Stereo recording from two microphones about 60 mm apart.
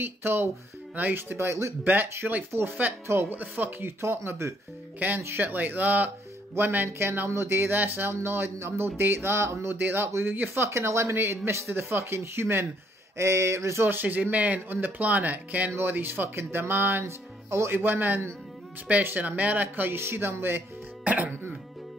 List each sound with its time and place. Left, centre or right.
0.0 s speech: right
1.9 s speech: right
4.0 s speech: right
4.9 s speech: right
7.7 s speech: right
10.6 s speech: right
13.8 s speech: right
17.0 s speech: right
17.6 s speech: right
21.0 s speech: right